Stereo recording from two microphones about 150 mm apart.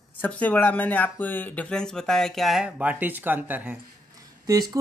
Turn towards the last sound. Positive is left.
turn(degrees=-25)  # may be behind; listen again after turning